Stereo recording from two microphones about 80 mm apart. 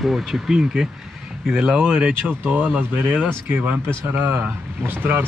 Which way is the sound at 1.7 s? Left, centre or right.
Right.